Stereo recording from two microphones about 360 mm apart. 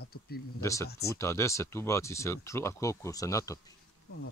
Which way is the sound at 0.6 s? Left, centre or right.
Centre.